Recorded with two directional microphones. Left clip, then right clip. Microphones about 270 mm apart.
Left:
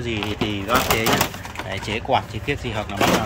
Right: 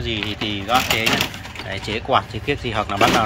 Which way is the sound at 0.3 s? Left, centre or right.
Centre.